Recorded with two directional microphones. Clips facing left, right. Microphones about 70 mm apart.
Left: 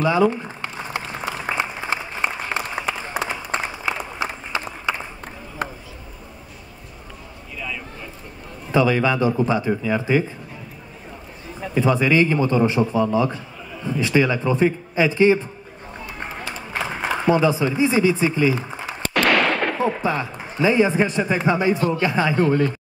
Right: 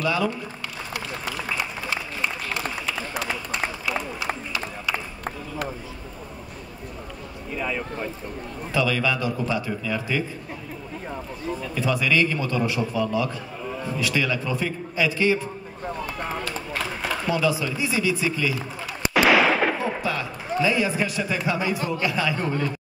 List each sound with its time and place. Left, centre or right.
0.0 s applause: left
4.5 s run: left
5.6 s a sound: left
7.5 s a sound: right
8.7 s a man's voice: left
11.6 s a man's voice: left
16.2 s a sound: left
19.1 s gunshot: centre
20.0 s a man's voice: left